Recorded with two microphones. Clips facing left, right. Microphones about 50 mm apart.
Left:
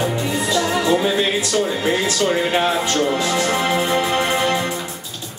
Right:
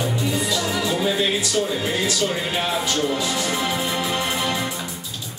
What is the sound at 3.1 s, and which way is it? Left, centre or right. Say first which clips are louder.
Music: left 5 dB; left.